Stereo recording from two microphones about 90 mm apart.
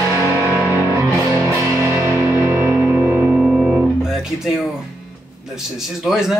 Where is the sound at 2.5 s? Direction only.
20° right (ahead or behind).